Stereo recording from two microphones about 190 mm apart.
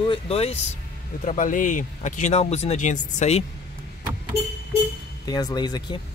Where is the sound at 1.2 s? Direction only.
45° left (ahead or behind).